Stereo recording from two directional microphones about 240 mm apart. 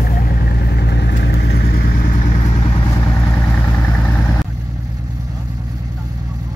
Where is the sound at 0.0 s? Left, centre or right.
Left; by 4.5 s centre.